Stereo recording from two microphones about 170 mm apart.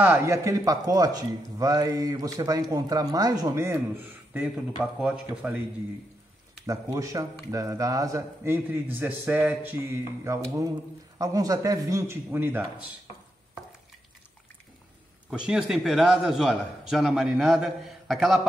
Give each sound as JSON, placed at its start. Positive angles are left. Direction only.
{"t": 0.0, "sound": "a man's voice", "side_deg": -15}
{"t": 6.6, "sound": "a man's voice", "side_deg": -20}
{"t": 15.2, "sound": "a man's voice", "side_deg": -5}